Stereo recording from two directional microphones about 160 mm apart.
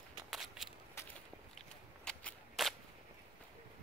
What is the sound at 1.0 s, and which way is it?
Walk, 15° left (ahead or behind).